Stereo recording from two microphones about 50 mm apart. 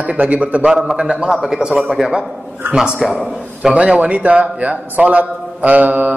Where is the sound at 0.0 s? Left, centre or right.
Right.